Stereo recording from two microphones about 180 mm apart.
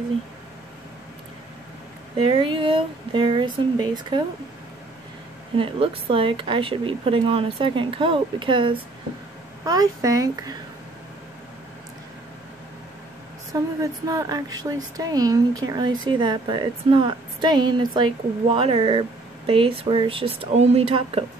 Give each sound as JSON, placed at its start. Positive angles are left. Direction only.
{"t": 2.1, "sound": "speech", "side_deg": -30}
{"t": 5.6, "sound": "speech", "side_deg": -30}
{"t": 13.5, "sound": "speech", "side_deg": -20}